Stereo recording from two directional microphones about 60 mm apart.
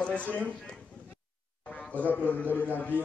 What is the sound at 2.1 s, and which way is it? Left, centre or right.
Speech, left.